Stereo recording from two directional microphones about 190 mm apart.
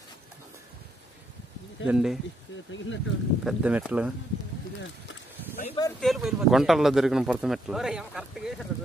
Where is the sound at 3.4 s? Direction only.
5° right (ahead or behind).